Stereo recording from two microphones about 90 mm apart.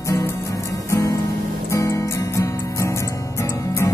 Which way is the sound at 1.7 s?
35° left (ahead or behind).